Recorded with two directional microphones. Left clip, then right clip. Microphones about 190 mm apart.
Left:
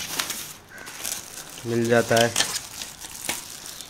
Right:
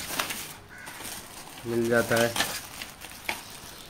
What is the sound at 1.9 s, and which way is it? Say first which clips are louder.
Speech: left 5 dB; 60° left (ahead or behind).